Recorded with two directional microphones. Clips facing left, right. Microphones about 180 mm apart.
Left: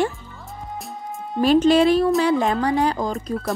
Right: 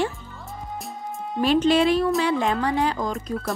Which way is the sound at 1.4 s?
40° left (ahead or behind).